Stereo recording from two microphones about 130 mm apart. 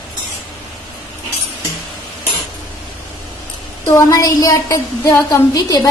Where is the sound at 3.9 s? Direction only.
25° left (ahead or behind).